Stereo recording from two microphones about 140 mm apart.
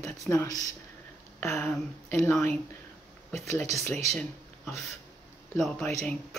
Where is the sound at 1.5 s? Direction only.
5° left (ahead or behind).